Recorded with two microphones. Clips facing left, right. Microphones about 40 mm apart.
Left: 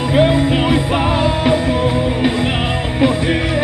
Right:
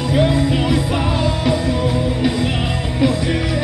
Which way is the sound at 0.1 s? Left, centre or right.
Left.